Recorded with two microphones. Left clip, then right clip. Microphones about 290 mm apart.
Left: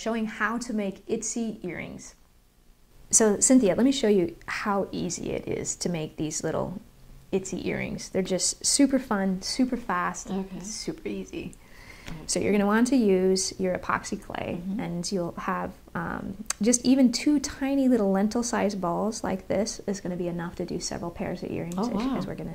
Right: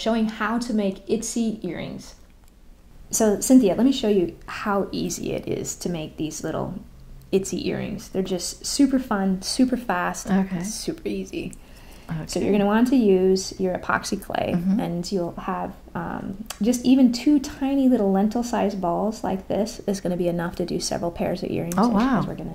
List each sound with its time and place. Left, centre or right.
0.0 s speech: left
3.1 s speech: left
7.2 s speech: centre; by 9.3 s left
9.4 s speech: centre
10.2 s a woman's voice: right
10.6 s speech: centre
12.3 s speech: left; by 14.9 s centre
15.0 s speech: left
19.8 s speech: centre